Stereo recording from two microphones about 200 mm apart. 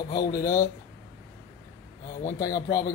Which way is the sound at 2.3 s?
20° left (ahead or behind).